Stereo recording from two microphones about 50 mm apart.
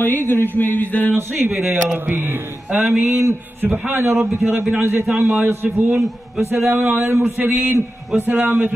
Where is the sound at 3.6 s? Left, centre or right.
Right.